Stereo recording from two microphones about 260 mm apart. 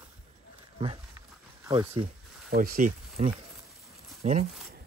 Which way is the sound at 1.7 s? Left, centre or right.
Centre.